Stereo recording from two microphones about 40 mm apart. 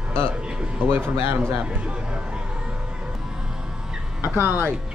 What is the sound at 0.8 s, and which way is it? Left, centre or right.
Speech, right.